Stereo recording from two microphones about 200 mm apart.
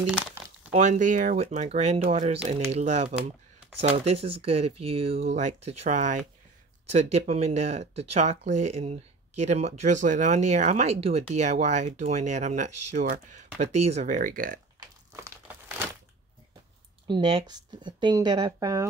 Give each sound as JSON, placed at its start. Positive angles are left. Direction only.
{"t": 0.7, "sound": "speech", "side_deg": -35}
{"t": 15.2, "sound": "crumpling", "side_deg": -15}
{"t": 17.1, "sound": "speech", "side_deg": -25}